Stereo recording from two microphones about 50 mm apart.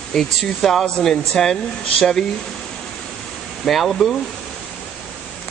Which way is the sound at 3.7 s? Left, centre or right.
Centre.